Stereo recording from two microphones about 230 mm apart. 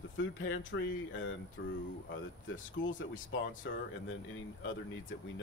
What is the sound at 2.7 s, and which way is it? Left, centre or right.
Speech, left.